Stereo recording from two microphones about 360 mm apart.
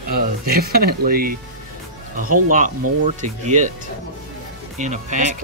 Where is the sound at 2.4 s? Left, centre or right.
Right.